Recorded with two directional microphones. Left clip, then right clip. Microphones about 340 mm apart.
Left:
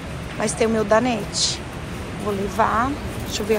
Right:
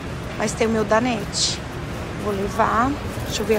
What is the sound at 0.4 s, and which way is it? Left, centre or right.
Speech, centre.